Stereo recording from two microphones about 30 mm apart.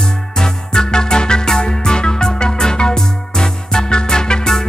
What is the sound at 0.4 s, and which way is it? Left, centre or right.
Music, left.